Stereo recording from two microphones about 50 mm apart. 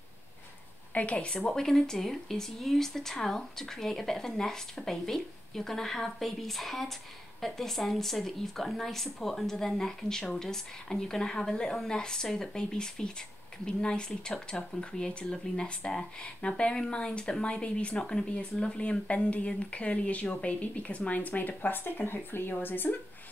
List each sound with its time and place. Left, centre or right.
0.9 s speech: left
1.5 s speech: centre; by 22.9 s left